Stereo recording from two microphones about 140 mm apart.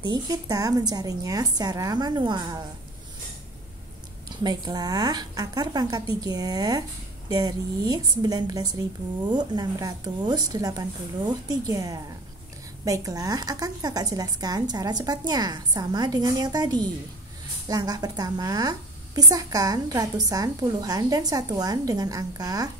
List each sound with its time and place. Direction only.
0.0 s a woman's voice: 30° right (ahead or behind)
4.4 s a woman's voice: 30° right (ahead or behind)